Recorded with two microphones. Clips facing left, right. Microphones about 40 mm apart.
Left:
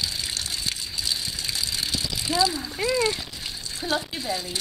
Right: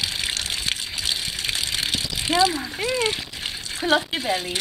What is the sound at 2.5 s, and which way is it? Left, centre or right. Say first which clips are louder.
Speech: right 1 dB; right.